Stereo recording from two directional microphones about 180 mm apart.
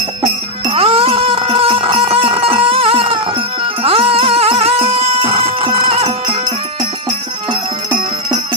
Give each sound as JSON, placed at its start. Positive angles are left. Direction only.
{"t": 0.2, "sound": "music", "side_deg": -30}